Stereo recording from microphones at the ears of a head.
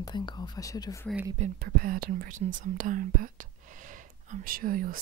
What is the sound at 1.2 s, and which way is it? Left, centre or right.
Speech, right.